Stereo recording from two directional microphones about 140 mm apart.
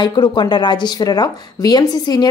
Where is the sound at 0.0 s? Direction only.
30° left (ahead or behind).